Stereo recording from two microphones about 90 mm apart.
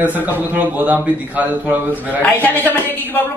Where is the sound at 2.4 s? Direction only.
20° left (ahead or behind).